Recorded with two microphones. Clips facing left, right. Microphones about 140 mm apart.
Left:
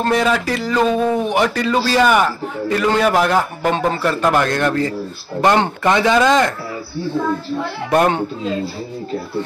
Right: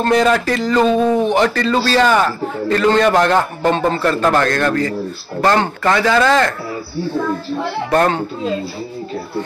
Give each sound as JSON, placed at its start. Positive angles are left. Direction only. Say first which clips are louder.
{"t": 0.0, "sound": "speech", "louder": "right 3 dB", "side_deg": 5}
{"t": 7.9, "sound": "speech", "louder": "even", "side_deg": 15}